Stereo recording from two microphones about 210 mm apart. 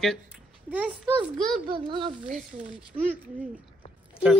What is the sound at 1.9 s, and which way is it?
Speech, 25° right (ahead or behind).